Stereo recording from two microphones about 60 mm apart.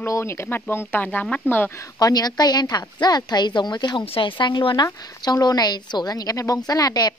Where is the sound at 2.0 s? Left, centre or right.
Left.